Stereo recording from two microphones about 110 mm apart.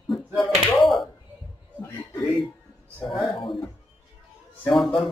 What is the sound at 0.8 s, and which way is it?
Tap, centre (ahead or behind).